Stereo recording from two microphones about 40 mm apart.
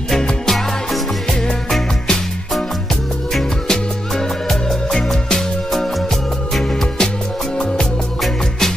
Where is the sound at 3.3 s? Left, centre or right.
Centre.